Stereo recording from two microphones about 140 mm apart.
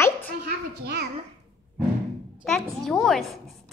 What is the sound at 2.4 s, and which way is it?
A woman's voice, 5° left (ahead or behind).